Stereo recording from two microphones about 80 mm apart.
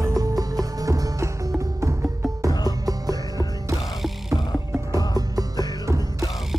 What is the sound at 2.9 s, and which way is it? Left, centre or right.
Music, right.